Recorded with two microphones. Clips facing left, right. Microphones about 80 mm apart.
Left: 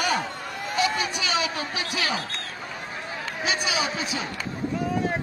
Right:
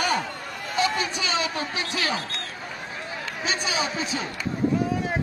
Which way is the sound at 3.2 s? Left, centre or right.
Right.